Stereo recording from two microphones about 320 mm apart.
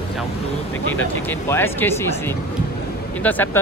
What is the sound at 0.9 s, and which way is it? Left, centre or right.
Speech, centre.